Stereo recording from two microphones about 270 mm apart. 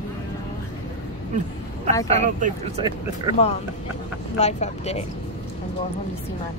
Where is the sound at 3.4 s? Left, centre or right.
Left.